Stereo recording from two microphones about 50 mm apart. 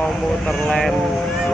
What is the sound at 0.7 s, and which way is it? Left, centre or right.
Vehicle, centre.